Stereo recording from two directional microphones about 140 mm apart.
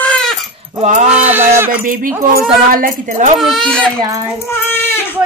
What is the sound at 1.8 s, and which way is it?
Speech, 85° right.